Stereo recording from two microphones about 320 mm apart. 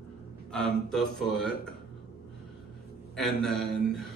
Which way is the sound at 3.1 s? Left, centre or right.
Centre.